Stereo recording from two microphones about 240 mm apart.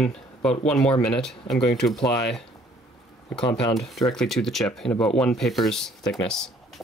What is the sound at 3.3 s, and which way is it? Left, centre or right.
Speech, centre.